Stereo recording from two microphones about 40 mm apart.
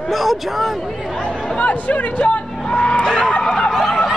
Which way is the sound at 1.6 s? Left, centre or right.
Left.